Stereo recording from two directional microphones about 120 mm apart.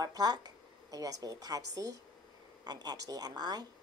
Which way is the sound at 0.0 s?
35° right (ahead or behind).